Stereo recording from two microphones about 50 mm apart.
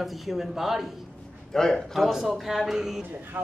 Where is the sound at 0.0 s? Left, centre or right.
Centre.